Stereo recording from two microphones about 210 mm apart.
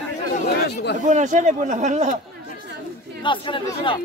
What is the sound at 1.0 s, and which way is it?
Speech, 35° right (ahead or behind).